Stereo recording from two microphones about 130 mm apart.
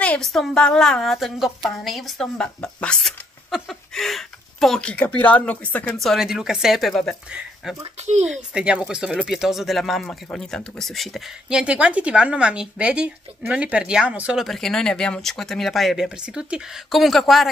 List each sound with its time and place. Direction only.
0.0 s speech: 5° left (ahead or behind)
5.9 s speech: centre (ahead or behind)
7.2 s speech: 10° right (ahead or behind)
8.0 s speech: 60° right (ahead or behind)
8.3 s speech: 5° right (ahead or behind)